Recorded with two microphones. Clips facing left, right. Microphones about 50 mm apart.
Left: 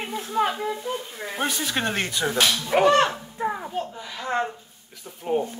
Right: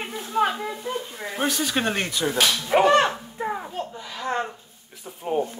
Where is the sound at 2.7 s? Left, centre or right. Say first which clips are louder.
Right 1 dB; centre.